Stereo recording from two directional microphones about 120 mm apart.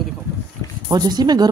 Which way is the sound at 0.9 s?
35° right (ahead or behind).